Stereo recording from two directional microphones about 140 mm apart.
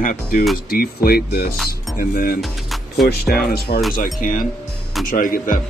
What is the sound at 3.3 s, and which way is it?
Speech, 90° left.